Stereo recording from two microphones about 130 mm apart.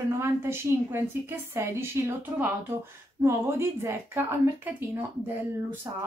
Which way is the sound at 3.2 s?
20° right (ahead or behind).